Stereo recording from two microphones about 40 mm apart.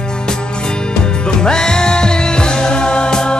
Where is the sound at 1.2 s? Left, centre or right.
Centre.